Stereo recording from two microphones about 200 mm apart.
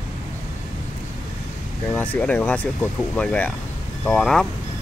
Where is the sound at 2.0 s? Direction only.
5° left (ahead or behind).